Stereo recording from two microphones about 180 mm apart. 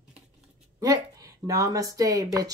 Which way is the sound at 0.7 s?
20° right (ahead or behind).